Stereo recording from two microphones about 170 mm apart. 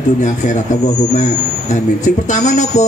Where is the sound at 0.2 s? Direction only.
45° left (ahead or behind).